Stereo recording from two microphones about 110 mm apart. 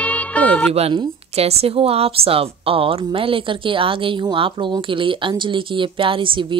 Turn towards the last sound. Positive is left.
turn(degrees=-50)  # may be behind; listen again after turning